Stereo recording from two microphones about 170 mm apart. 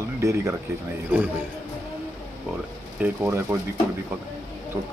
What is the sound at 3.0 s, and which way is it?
Speech, 10° right (ahead or behind).